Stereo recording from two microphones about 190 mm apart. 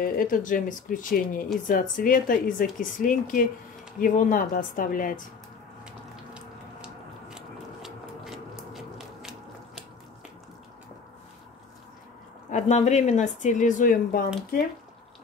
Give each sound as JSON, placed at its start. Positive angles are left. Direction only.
{"t": 0.0, "sound": "speech", "side_deg": 45}
{"t": 6.3, "sound": "a sound", "side_deg": -5}
{"t": 12.4, "sound": "speech", "side_deg": 40}